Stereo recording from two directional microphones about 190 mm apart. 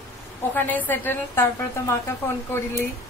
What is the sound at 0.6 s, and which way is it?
Speech, 10° left (ahead or behind).